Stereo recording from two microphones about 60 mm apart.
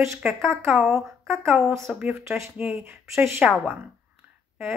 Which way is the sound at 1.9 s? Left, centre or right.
Centre.